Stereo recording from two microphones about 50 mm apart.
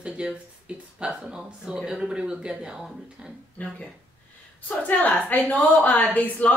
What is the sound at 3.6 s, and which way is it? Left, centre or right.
Speech, left.